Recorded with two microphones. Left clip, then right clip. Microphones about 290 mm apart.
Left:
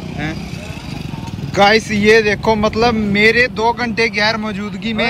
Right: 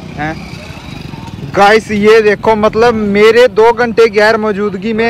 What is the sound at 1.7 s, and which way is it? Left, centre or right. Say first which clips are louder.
Speech: right 5 dB; centre.